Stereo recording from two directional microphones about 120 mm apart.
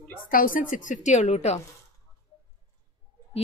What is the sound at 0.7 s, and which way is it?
Speech, 90° left.